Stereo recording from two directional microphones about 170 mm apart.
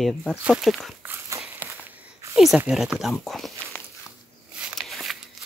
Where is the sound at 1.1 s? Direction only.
15° right (ahead or behind).